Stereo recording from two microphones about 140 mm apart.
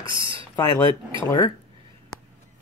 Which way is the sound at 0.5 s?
25° left (ahead or behind).